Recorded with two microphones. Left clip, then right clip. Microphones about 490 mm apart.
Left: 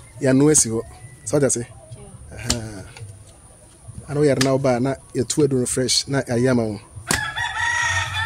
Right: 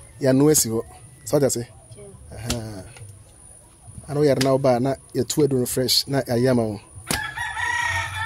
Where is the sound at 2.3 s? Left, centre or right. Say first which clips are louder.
Left 3 dB; right.